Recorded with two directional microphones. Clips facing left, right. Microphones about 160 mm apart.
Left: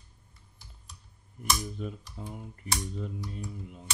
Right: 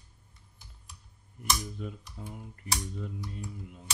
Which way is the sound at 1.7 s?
20° left (ahead or behind).